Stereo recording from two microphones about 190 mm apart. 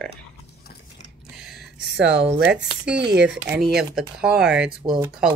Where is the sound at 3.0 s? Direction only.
65° right (ahead or behind).